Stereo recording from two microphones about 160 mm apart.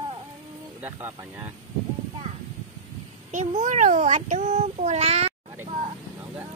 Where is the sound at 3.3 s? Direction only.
45° right (ahead or behind).